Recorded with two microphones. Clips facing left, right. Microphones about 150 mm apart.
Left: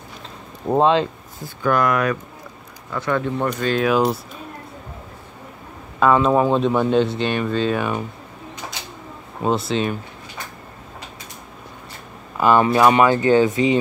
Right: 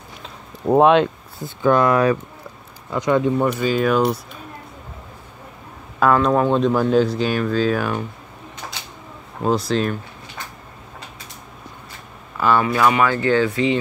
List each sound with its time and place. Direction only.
0.7 s speech: 5° right (ahead or behind)
1.4 s speech: 25° right (ahead or behind)
2.9 s speech: 15° right (ahead or behind); by 4.2 s centre (ahead or behind)
5.9 s speech: centre (ahead or behind)
9.4 s speech: centre (ahead or behind)
12.4 s speech: 15° left (ahead or behind)